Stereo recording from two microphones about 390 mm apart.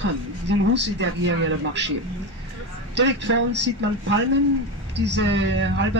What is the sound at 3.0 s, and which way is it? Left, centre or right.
Speech, right.